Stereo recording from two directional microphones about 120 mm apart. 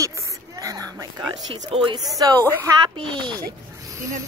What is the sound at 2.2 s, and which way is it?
Speech, 35° right (ahead or behind).